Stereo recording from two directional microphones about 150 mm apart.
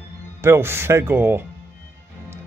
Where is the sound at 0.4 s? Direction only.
15° right (ahead or behind).